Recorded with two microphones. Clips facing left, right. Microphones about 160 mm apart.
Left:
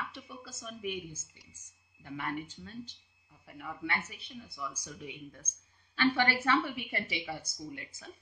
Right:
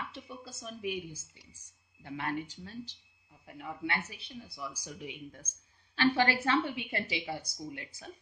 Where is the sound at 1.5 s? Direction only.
35° right (ahead or behind).